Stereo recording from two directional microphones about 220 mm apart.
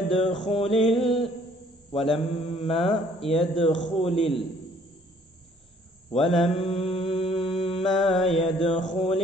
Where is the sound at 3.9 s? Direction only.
25° left (ahead or behind).